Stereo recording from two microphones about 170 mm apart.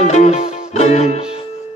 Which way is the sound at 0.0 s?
40° left (ahead or behind).